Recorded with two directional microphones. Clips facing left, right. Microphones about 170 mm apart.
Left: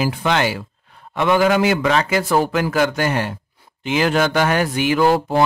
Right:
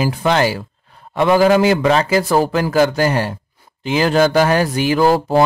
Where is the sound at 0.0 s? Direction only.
35° right (ahead or behind).